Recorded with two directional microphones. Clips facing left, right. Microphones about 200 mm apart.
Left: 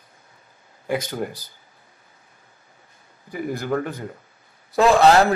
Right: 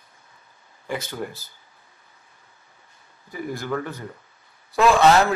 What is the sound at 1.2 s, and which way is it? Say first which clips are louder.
Speech: left 3 dB; 15° left (ahead or behind).